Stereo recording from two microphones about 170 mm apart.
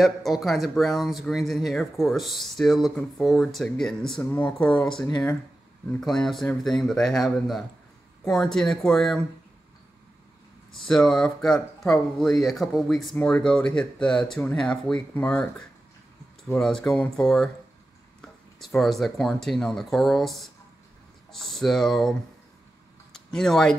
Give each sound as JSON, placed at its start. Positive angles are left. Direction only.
{"t": 0.0, "sound": "speech", "side_deg": 0}
{"t": 10.8, "sound": "speech", "side_deg": 5}
{"t": 16.5, "sound": "speech", "side_deg": 5}
{"t": 23.1, "sound": "speech", "side_deg": 5}